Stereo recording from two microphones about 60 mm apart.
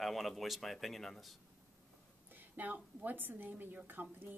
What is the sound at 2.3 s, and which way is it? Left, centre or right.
A woman's voice, right.